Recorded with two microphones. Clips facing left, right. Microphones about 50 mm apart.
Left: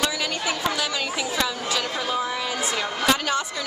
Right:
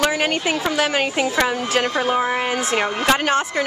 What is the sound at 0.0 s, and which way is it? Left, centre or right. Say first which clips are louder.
A woman's voice: right 6 dB; right.